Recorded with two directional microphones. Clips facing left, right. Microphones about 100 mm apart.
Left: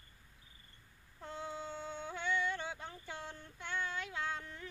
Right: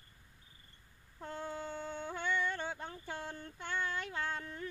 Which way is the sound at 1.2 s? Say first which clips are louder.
Right 2 dB; 50° right (ahead or behind).